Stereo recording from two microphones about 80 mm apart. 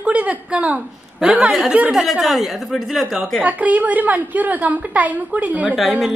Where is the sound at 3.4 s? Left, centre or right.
Centre.